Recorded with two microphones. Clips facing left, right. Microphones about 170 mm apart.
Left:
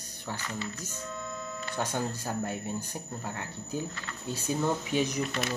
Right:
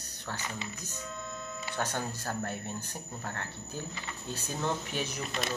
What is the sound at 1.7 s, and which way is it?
Speech, 10° left (ahead or behind).